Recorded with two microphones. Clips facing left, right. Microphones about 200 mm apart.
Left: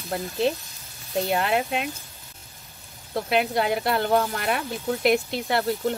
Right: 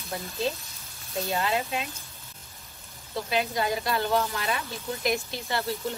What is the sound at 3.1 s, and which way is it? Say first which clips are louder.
A woman's voice: left 5 dB; 60° left (ahead or behind).